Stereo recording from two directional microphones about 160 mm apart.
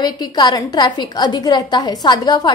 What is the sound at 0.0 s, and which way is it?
A woman's voice, 25° left (ahead or behind).